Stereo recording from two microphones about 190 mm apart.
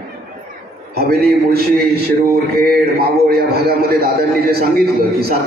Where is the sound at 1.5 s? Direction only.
55° right (ahead or behind).